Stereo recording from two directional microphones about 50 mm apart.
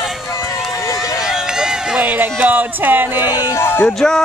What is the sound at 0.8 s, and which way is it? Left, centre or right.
Run, left.